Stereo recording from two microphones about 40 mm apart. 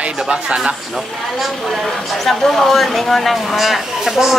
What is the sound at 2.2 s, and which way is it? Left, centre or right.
Speech, centre.